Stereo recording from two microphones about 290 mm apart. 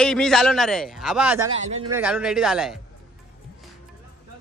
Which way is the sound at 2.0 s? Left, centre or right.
Centre.